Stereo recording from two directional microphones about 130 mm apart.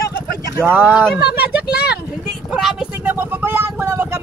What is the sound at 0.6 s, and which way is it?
Speech, 15° right (ahead or behind).